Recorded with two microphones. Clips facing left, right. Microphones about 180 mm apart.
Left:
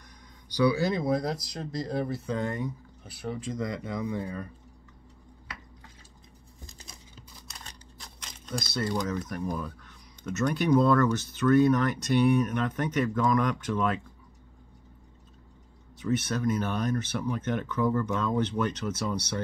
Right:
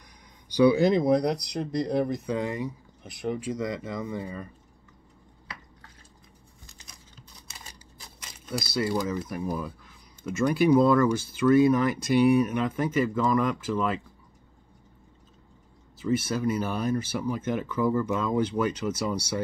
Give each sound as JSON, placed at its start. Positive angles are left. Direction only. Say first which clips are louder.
{"t": 0.6, "sound": "speech", "louder": "right 5 dB", "side_deg": -20}
{"t": 3.0, "sound": "speech", "louder": "right 5 dB", "side_deg": -15}
{"t": 7.2, "sound": "speech", "louder": "right 1 dB", "side_deg": 0}
{"t": 16.0, "sound": "speech", "louder": "right 2 dB", "side_deg": -10}